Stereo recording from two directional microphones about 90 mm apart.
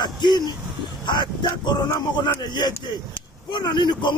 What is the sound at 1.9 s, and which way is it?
Speech, 55° left (ahead or behind).